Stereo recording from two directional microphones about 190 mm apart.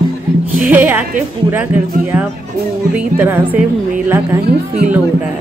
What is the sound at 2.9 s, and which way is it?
Speech, 10° right (ahead or behind).